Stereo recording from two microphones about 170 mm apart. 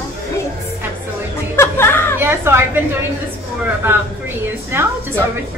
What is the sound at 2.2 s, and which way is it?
Speech, 15° right (ahead or behind).